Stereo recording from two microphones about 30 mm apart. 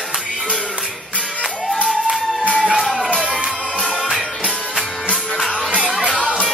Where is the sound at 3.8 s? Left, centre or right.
Centre.